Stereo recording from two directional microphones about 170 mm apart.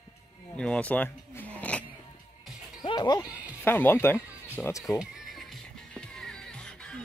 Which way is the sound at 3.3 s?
10° right (ahead or behind).